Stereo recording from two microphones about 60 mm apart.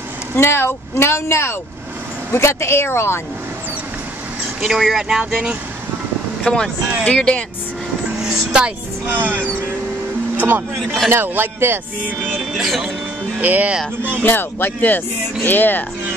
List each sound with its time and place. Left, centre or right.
0.4 s speech: left
4.6 s speech: centre
6.4 s speech: centre
8.2 s speech: centre
9.0 s a man's voice: right
10.8 s speech: centre
11.1 s a man's voice: right
12.4 s speech: centre
13.4 s speech: right
14.2 s speech: left